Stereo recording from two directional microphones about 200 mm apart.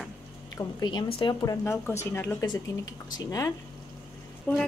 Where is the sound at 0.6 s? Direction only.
20° left (ahead or behind).